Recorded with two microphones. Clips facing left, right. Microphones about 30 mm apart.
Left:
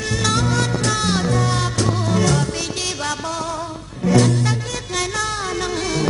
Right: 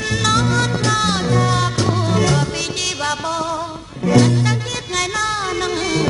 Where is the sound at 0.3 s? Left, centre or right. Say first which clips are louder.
Right 3 dB; centre.